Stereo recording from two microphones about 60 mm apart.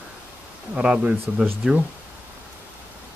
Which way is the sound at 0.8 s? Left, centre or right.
Centre.